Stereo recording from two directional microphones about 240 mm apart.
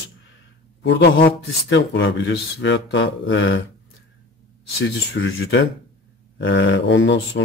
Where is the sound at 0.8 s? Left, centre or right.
Left.